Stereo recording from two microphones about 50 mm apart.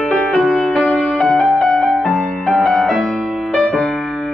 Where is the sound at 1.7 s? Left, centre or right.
Centre.